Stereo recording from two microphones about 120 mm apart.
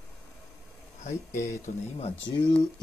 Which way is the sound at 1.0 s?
75° left (ahead or behind).